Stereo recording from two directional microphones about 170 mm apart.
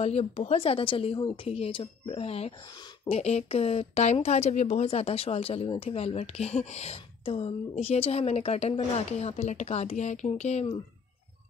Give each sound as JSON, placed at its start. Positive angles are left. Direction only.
{"t": 0.0, "sound": "speech", "side_deg": 35}